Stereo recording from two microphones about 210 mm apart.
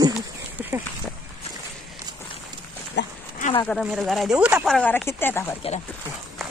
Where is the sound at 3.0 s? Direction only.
55° left (ahead or behind).